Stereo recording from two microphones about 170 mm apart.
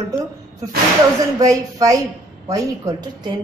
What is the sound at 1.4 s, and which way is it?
A woman's voice, 20° right (ahead or behind).